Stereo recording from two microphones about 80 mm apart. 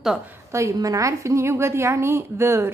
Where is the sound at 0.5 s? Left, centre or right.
Right.